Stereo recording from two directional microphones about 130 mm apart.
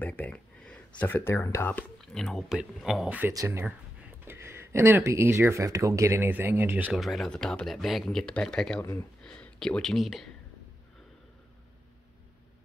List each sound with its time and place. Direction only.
0.0 s speech: 15° left (ahead or behind)
1.7 s speech: 5° left (ahead or behind); by 6.9 s 15° right (ahead or behind)
6.9 s speech: centre (ahead or behind)